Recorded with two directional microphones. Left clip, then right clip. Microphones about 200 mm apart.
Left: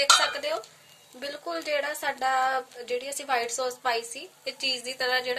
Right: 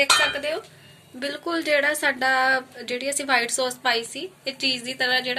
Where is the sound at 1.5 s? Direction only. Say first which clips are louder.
Right 8 dB; 40° left (ahead or behind).